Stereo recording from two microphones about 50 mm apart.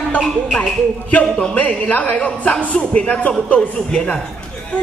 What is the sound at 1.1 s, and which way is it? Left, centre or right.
Speech, left.